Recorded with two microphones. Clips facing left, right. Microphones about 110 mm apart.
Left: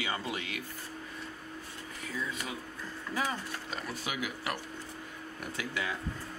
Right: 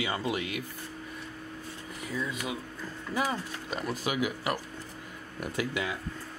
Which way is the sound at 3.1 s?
15° right (ahead or behind).